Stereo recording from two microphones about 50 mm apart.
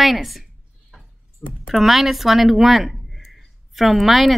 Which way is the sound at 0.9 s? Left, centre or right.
Centre.